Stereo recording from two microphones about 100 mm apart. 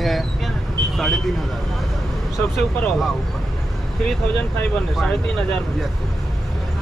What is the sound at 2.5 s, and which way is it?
Speech, centre (ahead or behind).